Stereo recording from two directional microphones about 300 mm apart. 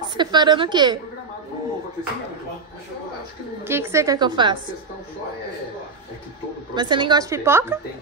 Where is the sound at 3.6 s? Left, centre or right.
Centre.